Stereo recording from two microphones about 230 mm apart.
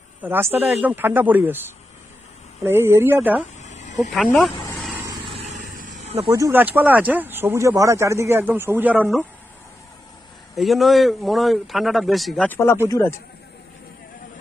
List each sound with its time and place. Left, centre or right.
0.2 s speech: centre
2.6 s speech: centre
3.6 s a sound: left
4.1 s a man's voice: centre
4.9 s vehicle: centre
5.3 s vehicle: right
6.3 s speech: centre
10.5 s a man's voice: centre